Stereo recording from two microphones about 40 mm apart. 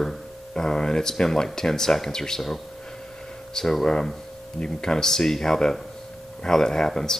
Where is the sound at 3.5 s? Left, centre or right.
Centre.